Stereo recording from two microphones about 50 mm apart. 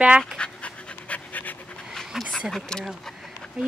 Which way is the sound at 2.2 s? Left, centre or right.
Centre.